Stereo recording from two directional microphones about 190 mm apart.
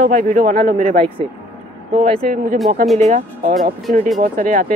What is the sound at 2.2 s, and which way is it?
Speech, 45° right (ahead or behind).